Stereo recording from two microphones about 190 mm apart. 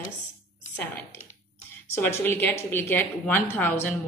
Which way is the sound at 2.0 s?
10° left (ahead or behind).